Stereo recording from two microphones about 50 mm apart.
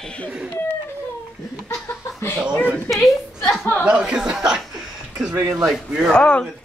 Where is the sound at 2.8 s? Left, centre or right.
Centre.